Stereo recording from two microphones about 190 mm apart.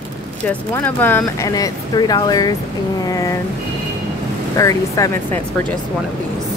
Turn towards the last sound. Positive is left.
turn(degrees=15)  # may be behind; listen again after turning